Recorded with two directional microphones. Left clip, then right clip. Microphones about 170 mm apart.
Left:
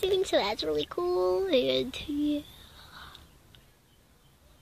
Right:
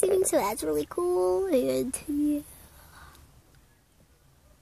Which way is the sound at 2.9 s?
10° right (ahead or behind).